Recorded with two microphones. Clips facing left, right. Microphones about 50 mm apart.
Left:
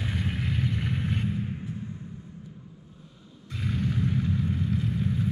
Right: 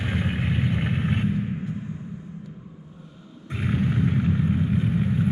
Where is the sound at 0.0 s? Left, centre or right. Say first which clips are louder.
Right 5 dB; right.